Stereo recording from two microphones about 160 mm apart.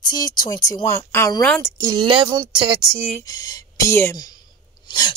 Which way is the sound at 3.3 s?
25° left (ahead or behind).